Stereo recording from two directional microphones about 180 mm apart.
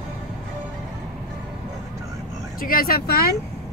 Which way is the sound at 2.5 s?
55° left (ahead or behind).